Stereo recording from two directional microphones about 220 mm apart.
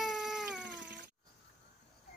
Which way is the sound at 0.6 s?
55° right (ahead or behind).